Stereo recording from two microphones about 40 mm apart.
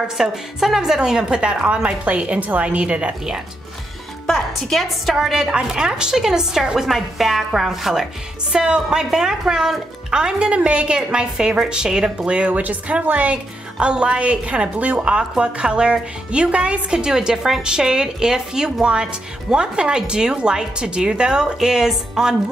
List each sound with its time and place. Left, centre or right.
0.2 s a woman's voice: centre; by 3.2 s right
4.6 s a woman's voice: centre
8.5 s a woman's voice: right